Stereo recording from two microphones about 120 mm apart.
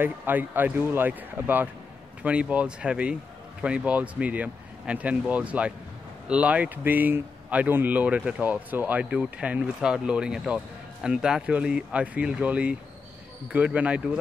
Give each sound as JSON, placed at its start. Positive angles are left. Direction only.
{"t": 0.0, "sound": "speech", "side_deg": -15}